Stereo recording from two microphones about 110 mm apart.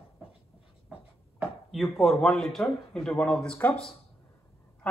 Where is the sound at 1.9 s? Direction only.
Centre (ahead or behind).